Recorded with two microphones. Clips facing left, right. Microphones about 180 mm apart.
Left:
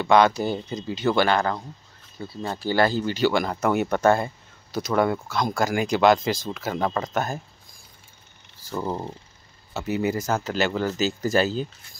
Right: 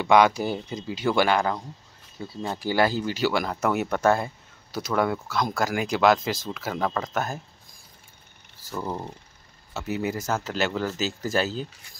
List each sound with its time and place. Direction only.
0.0 s speech: 15° right (ahead or behind)
8.8 s speech: 20° left (ahead or behind)
9.8 s speech: centre (ahead or behind)